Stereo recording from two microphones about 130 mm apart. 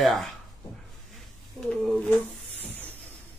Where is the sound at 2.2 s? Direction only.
Centre (ahead or behind).